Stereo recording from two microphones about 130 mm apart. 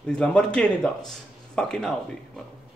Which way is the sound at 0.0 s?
5° left (ahead or behind).